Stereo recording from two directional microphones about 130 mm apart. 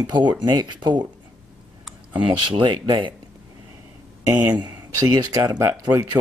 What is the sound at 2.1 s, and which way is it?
Speech, 40° right (ahead or behind).